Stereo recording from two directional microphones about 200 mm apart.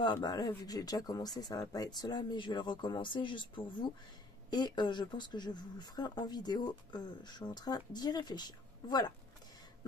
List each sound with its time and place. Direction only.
0.0 s speech: 20° left (ahead or behind)